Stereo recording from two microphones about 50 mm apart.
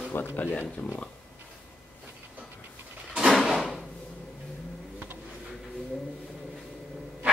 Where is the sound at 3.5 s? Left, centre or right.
Centre.